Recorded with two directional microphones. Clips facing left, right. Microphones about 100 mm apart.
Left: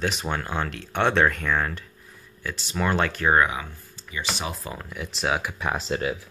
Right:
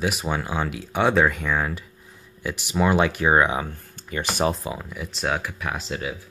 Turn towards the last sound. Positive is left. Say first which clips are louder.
# left 3 dB
turn(degrees=35)  # may be behind; listen again after turning